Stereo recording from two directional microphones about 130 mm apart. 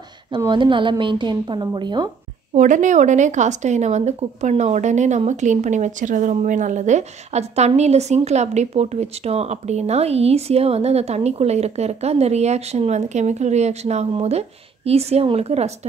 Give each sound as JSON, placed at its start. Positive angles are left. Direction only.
{"t": 0.5, "sound": "a woman's voice", "side_deg": -40}
{"t": 2.5, "sound": "a woman's voice", "side_deg": -70}